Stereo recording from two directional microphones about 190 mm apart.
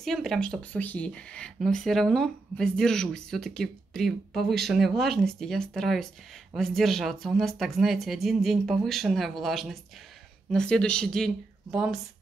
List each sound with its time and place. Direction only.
0.0 s speech: centre (ahead or behind)